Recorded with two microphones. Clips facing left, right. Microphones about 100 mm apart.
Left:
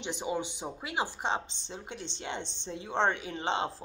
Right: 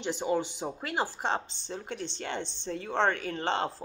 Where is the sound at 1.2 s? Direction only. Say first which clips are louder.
Right 1 dB; 15° left (ahead or behind).